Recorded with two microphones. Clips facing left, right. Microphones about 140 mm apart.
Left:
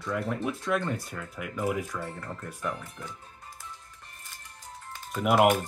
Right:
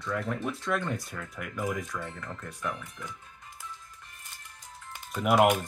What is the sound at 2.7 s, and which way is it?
Speech, 35° left (ahead or behind).